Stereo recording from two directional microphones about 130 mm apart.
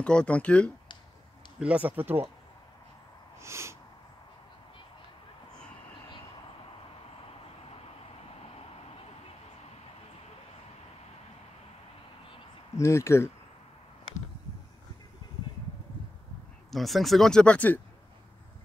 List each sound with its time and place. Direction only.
0.0 s speech: 10° left (ahead or behind)
1.6 s speech: 10° right (ahead or behind)
3.3 s a sound: 20° right (ahead or behind)
8.4 s vehicle: 50° left (ahead or behind)
12.7 s speech: 20° left (ahead or behind)
16.7 s speech: centre (ahead or behind)